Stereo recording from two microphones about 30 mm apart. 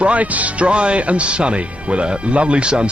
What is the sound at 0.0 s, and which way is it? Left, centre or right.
Speech, right.